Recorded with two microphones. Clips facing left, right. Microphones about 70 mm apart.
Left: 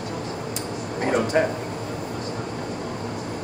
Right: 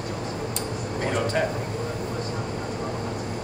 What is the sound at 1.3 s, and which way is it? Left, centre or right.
Speech, centre.